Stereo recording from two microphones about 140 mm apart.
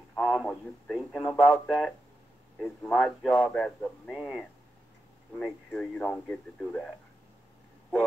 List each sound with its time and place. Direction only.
0.2 s a man's voice: centre (ahead or behind)